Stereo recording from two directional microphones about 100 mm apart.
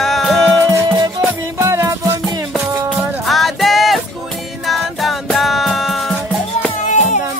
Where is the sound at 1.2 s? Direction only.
30° right (ahead or behind).